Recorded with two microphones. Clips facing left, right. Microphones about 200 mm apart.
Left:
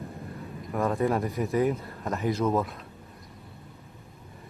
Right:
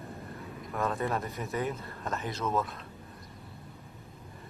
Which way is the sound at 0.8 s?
30° left (ahead or behind).